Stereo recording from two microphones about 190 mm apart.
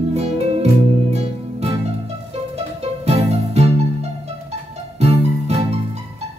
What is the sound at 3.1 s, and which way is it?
Music, 35° right (ahead or behind).